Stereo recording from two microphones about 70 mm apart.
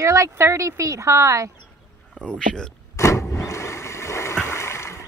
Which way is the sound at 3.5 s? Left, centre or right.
Left.